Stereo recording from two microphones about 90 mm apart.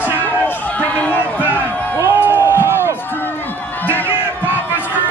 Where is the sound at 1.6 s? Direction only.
15° left (ahead or behind).